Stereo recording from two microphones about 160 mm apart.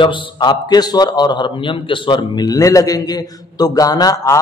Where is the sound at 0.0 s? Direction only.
30° left (ahead or behind).